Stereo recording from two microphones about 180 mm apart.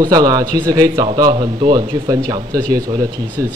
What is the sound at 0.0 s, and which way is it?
Speech, 20° right (ahead or behind).